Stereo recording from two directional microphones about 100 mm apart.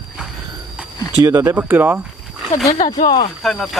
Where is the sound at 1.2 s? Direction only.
25° right (ahead or behind).